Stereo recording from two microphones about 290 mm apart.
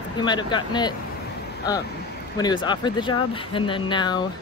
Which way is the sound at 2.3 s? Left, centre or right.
Centre.